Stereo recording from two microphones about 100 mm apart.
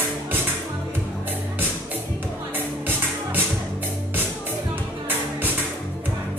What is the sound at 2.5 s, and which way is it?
Music, 20° right (ahead or behind).